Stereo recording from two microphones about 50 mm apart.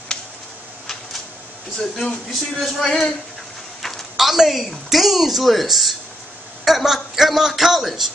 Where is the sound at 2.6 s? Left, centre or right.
Centre.